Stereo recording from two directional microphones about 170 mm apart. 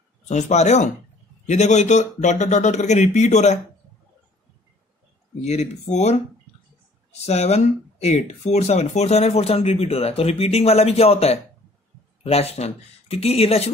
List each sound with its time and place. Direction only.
0.3 s speech: 45° left (ahead or behind)
5.4 s speech: 40° left (ahead or behind)